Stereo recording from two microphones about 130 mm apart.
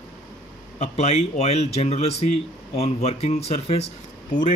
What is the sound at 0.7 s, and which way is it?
Speech, 55° left (ahead or behind).